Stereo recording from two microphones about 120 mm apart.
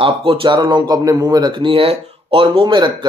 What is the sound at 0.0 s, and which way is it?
Speech, 45° right (ahead or behind).